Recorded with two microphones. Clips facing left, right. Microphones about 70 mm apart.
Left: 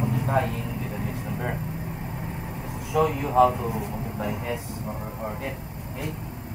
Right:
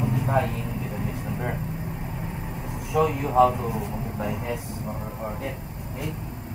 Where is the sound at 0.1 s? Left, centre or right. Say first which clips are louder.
Right 1 dB; left.